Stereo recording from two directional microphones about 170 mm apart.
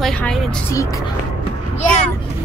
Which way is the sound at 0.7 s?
20° left (ahead or behind).